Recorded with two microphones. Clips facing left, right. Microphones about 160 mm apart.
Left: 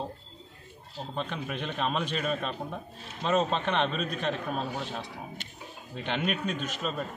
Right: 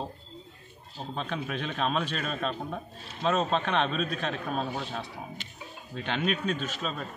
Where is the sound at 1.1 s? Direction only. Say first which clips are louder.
Right 1 dB; 15° left (ahead or behind).